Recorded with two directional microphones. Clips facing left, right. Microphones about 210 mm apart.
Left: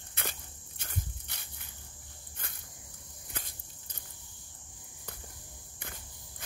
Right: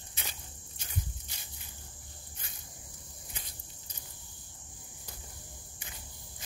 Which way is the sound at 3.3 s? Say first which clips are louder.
Left 5 dB; 50° left (ahead or behind).